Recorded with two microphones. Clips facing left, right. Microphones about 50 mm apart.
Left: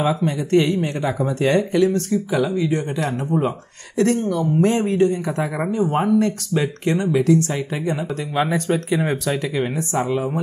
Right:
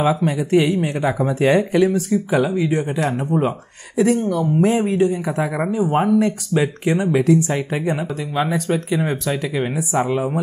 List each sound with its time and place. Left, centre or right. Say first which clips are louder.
0.0 s speech: right 2 dB; centre
8.4 s speech: even; centre
10.0 s speech: right 1 dB; centre